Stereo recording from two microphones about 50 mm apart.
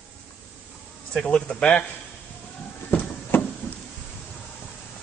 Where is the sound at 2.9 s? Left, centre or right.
Left.